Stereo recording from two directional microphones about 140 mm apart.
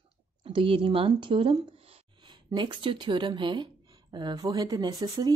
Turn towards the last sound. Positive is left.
turn(degrees=-25)  # may be behind; listen again after turning